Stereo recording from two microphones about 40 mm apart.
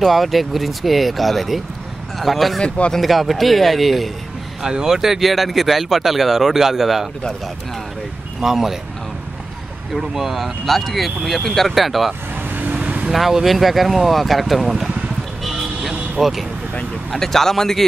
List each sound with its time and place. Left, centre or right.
0.0 s speech: centre
4.6 s speech: centre
8.4 s speech: centre
9.9 s speech: centre
12.4 s vehicle: right
12.7 s vehicle: right
13.1 s speech: centre
16.2 s speech: centre
17.2 s speech: centre